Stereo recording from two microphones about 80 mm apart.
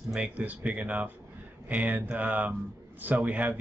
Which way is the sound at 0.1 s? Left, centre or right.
Centre.